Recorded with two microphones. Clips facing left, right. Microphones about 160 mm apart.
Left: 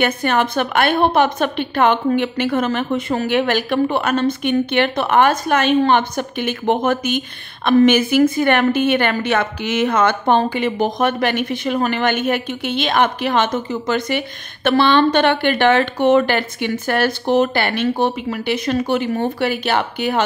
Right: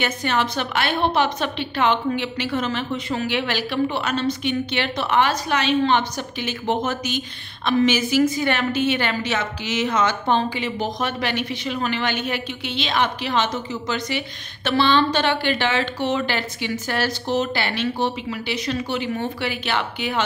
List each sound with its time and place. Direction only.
0.0 s a woman's voice: 55° left (ahead or behind)